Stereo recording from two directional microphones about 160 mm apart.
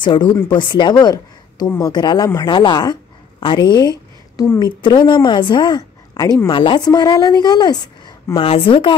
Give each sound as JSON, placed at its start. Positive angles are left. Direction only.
{"t": 0.0, "sound": "a woman's voice", "side_deg": 25}